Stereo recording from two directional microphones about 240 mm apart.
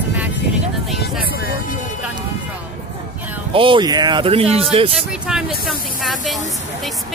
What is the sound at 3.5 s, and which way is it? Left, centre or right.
Speech, right.